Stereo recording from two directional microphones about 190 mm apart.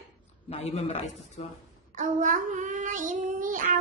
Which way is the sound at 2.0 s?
45° right (ahead or behind).